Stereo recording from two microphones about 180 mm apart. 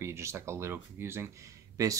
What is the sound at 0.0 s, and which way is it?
Speech, 15° right (ahead or behind).